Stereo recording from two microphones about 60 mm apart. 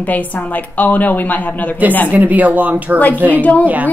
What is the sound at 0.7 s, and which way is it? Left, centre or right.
Speech, left.